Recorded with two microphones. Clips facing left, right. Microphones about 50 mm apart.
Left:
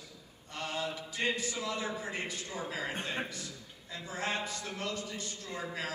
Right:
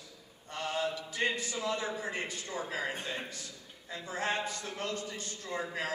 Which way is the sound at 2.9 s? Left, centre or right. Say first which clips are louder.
Left 2 dB; left.